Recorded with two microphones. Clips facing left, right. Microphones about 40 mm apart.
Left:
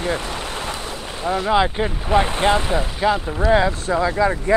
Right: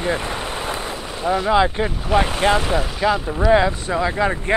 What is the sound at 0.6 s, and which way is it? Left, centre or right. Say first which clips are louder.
Boat: right 2 dB; right.